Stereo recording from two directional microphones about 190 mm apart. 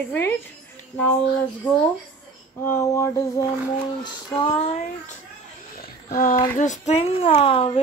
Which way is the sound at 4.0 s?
25° left (ahead or behind).